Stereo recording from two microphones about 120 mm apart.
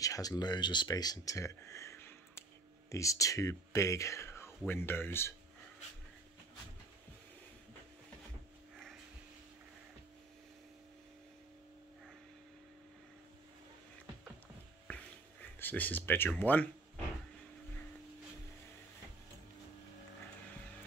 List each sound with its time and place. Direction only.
0.0 s speech: 30° left (ahead or behind)
15.4 s speech: 15° left (ahead or behind)